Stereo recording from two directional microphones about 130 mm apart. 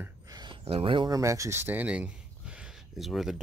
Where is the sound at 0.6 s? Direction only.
45° right (ahead or behind).